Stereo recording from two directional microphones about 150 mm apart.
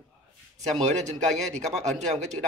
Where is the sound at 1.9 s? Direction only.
50° right (ahead or behind).